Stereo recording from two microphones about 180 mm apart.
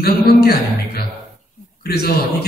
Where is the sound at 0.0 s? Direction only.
60° left (ahead or behind).